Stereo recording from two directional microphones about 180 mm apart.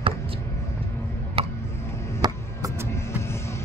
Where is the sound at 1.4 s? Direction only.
30° right (ahead or behind).